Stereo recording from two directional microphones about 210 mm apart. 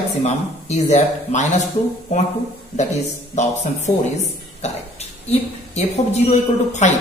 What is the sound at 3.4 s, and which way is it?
A man's voice, 35° left (ahead or behind).